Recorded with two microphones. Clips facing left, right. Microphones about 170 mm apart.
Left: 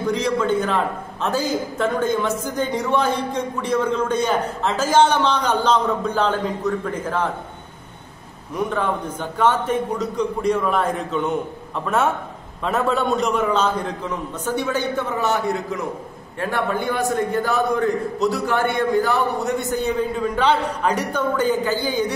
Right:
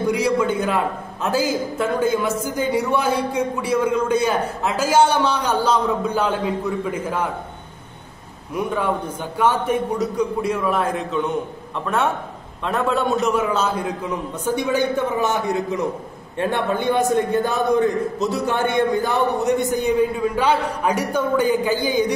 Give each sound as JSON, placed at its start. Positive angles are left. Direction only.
{"t": 0.0, "sound": "a man's voice", "side_deg": -10}
{"t": 8.5, "sound": "a man's voice", "side_deg": -10}